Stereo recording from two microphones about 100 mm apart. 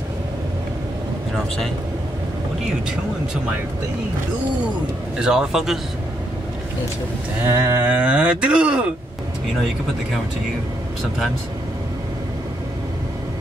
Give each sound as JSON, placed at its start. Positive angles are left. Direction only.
{"t": 5.2, "sound": "a man's voice", "side_deg": -5}
{"t": 7.4, "sound": "a sound", "side_deg": -25}
{"t": 7.9, "sound": "speech", "side_deg": -10}